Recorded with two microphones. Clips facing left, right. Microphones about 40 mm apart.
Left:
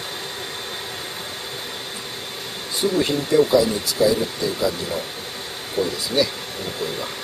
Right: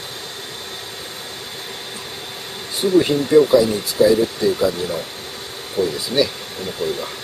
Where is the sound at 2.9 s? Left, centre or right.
Centre.